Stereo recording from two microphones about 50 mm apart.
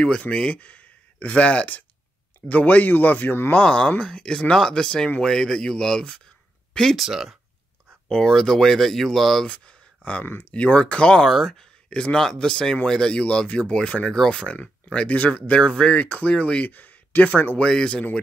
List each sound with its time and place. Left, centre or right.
0.2 s speech: left
3.6 s speech: centre
7.0 s speech: centre
8.1 s speech: centre
9.5 s a sound: left
10.5 s speech: left
11.2 s speech: centre; by 14.0 s left
14.0 s speech: centre
14.4 s speech: left
16.6 s speech: left
17.6 s speech: centre